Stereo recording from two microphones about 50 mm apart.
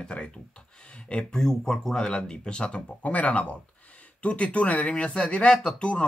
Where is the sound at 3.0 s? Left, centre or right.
Left.